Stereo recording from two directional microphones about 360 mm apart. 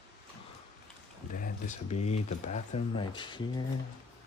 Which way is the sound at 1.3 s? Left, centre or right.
Left.